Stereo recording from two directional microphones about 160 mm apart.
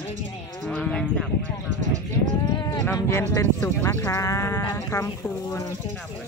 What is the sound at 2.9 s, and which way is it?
Speech, 15° left (ahead or behind).